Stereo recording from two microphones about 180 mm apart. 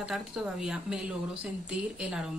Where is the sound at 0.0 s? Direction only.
Centre (ahead or behind).